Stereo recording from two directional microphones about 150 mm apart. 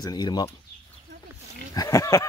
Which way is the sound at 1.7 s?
20° left (ahead or behind).